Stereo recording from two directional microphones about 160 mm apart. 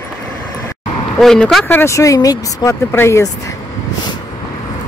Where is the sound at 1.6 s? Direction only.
15° left (ahead or behind).